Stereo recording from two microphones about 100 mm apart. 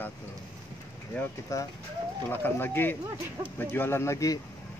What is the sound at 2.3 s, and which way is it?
Speech, 20° left (ahead or behind).